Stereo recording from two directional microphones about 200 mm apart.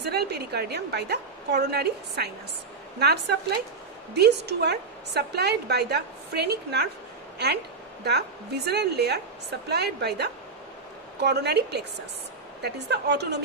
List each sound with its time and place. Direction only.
0.0 s a woman's voice: 55° right (ahead or behind)
8.0 s a woman's voice: 55° right (ahead or behind)